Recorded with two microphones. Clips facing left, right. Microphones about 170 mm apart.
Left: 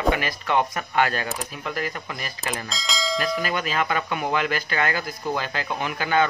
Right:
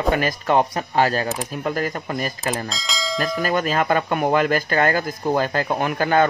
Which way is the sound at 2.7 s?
Centre (ahead or behind).